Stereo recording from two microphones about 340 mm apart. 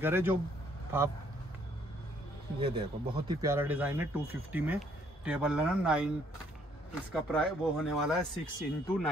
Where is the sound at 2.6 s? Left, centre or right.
Centre.